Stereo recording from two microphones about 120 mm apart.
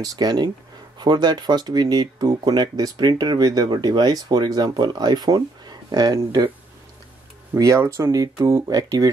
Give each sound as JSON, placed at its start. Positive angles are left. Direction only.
{"t": 0.0, "sound": "speech", "side_deg": -35}
{"t": 7.5, "sound": "speech", "side_deg": -30}